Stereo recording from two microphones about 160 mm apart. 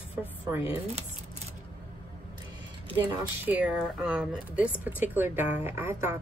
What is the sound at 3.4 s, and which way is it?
A woman's voice, 10° right (ahead or behind).